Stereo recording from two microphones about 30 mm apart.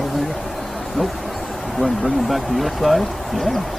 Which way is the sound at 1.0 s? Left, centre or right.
Right.